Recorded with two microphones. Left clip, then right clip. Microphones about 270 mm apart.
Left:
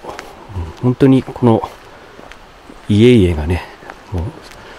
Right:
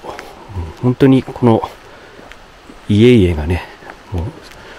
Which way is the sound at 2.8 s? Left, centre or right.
Centre.